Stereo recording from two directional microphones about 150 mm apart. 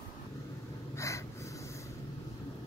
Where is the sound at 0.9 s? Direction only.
20° left (ahead or behind).